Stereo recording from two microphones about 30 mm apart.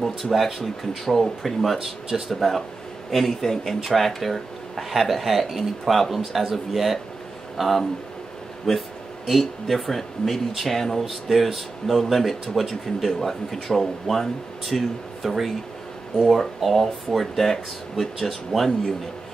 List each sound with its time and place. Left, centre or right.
0.0 s speech: centre
1.8 s speech: centre
2.2 s speech: centre
10.8 s speech: centre
11.1 s speech: centre